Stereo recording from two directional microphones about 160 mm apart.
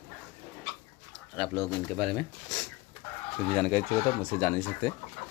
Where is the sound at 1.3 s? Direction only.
Centre (ahead or behind).